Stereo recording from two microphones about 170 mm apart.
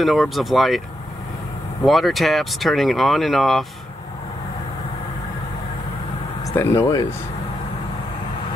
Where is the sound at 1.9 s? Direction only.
Centre (ahead or behind).